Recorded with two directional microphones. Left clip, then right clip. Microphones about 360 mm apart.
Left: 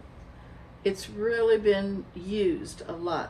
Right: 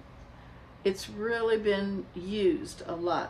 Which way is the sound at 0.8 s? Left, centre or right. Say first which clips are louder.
Left 2 dB; centre.